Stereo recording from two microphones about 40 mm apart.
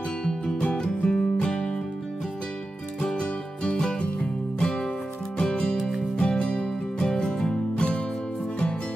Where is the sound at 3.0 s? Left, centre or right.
Left.